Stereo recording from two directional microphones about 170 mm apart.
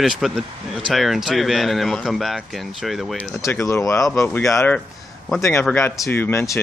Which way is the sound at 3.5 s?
15° left (ahead or behind).